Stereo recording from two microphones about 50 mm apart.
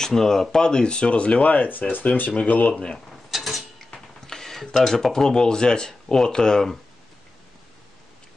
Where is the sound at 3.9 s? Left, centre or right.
Centre.